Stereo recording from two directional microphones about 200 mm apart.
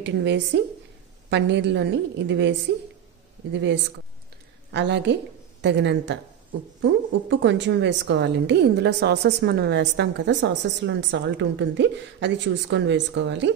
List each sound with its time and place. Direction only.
0.0 s a woman's voice: 60° right (ahead or behind)
3.5 s a woman's voice: 60° right (ahead or behind)